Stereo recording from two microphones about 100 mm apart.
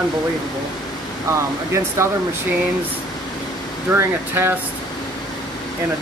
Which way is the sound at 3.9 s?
20° right (ahead or behind).